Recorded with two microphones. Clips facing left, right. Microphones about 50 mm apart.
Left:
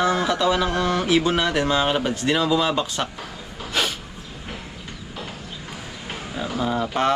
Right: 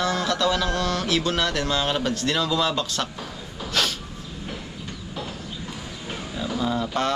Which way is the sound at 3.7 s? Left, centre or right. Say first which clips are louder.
Left 1 dB; centre.